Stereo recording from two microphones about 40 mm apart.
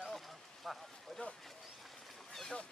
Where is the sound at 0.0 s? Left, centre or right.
Centre.